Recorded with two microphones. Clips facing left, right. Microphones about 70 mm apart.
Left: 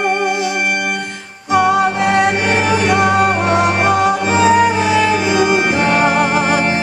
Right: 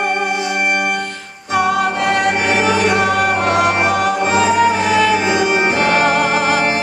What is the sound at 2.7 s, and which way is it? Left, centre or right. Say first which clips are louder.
Music: left 1 dB; centre.